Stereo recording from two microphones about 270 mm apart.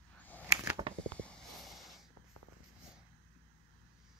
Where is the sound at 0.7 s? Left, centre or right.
Centre.